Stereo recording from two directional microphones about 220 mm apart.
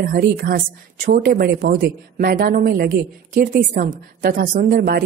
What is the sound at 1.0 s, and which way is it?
A woman's voice, 40° right (ahead or behind).